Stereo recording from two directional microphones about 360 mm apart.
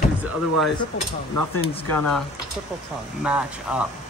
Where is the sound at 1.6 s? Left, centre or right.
Centre.